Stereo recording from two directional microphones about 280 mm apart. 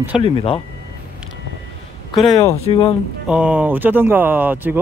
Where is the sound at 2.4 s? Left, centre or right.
Centre.